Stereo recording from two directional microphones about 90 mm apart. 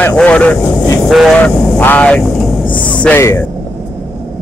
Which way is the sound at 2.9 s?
15° left (ahead or behind).